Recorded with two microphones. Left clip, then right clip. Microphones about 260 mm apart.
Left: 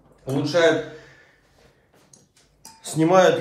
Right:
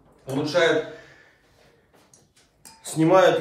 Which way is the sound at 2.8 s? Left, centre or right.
Left.